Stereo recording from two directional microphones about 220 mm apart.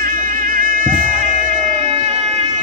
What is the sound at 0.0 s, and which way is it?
Music, 40° right (ahead or behind).